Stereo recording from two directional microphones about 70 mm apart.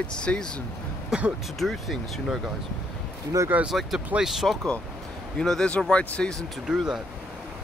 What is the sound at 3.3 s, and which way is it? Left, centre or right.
Speech, right.